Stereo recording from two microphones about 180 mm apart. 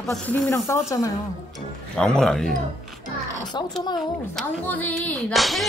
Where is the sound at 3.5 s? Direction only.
25° left (ahead or behind).